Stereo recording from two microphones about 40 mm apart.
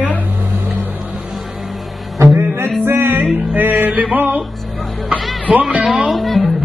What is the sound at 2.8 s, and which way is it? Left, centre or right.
Music, right.